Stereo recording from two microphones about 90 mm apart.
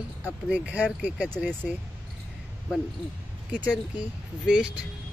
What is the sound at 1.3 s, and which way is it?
Speech, 10° left (ahead or behind).